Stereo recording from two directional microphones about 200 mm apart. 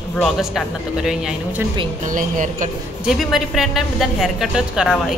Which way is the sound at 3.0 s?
Centre (ahead or behind).